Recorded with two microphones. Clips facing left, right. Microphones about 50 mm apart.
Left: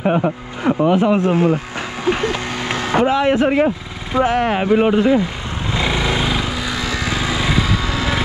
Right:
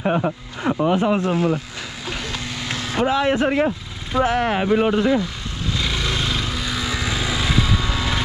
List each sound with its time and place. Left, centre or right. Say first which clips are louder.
0.0 s speech: left 4 dB; left
1.1 s speech: left 4 dB; left
2.0 s vehicle: left 10 dB; left
3.1 s speech: left 1 dB; left
5.0 s vehicle: left 4 dB; left; by 7.6 s centre